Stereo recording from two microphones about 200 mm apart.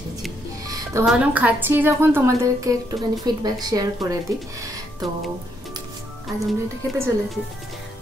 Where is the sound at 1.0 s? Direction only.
5° right (ahead or behind).